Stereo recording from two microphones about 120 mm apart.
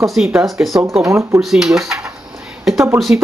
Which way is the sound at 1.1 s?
25° right (ahead or behind).